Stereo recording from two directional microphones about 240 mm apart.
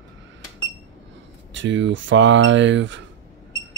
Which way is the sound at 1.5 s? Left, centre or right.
Right.